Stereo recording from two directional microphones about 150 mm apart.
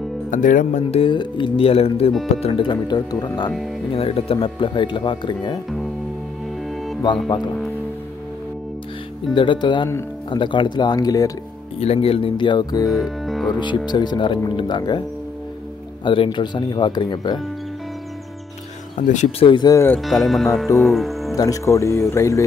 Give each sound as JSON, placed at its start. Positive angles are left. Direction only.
{"t": 0.3, "sound": "speech", "side_deg": 60}
{"t": 0.9, "sound": "speech", "side_deg": 35}
{"t": 3.9, "sound": "speech", "side_deg": 40}
{"t": 9.3, "sound": "speech", "side_deg": 35}
{"t": 11.8, "sound": "speech", "side_deg": 40}
{"t": 12.9, "sound": "music", "side_deg": 0}
{"t": 13.6, "sound": "speech", "side_deg": 30}
{"t": 18.9, "sound": "speech", "side_deg": 55}
{"t": 19.4, "sound": "speech", "side_deg": 30}
{"t": 20.0, "sound": "speech", "side_deg": 0}
{"t": 21.4, "sound": "speech", "side_deg": 20}